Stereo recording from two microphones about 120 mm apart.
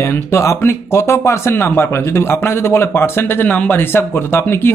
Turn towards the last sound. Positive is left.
turn(degrees=20)  # may be behind; listen again after turning